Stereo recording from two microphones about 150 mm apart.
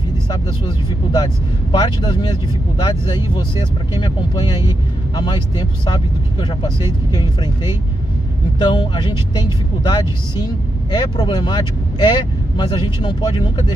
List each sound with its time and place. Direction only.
0.3 s speech: 30° left (ahead or behind)